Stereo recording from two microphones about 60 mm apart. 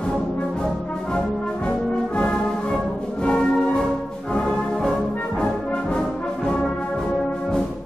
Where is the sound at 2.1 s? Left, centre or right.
Centre.